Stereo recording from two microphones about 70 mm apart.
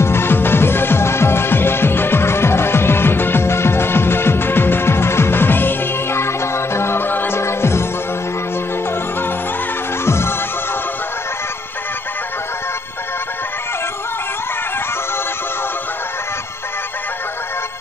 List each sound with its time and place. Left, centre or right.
0.0 s music: left
10.0 s music: left